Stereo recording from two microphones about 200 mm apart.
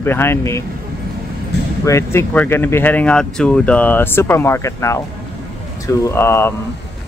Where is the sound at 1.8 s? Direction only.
15° left (ahead or behind).